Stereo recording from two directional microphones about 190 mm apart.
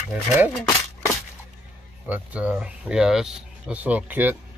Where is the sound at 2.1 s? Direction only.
10° right (ahead or behind).